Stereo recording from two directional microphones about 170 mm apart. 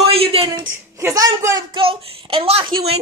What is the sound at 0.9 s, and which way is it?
A woman's voice, 20° right (ahead or behind).